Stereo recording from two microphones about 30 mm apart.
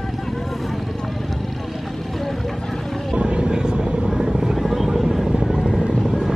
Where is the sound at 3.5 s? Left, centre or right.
Right.